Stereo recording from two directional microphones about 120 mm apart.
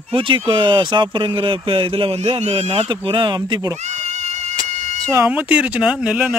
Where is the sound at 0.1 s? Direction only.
45° right (ahead or behind).